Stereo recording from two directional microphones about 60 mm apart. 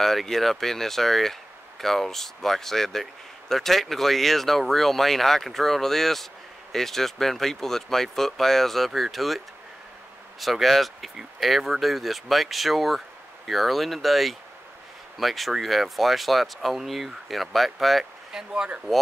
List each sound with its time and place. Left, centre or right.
0.0 s speech: centre
10.4 s speech: centre